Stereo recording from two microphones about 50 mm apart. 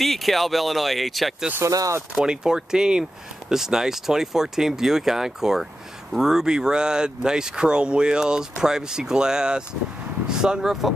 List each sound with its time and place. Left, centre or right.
0.0 s speech: centre
1.6 s speech: right
2.2 s speech: centre